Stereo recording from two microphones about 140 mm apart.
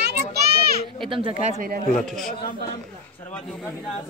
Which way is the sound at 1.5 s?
75° right (ahead or behind).